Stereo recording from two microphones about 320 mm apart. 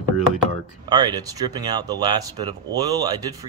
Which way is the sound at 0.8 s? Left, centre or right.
Centre.